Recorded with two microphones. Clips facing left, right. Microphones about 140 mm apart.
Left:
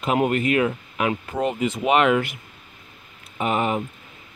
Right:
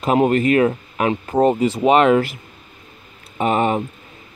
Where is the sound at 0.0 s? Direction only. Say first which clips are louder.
Right 5 dB; 35° right (ahead or behind).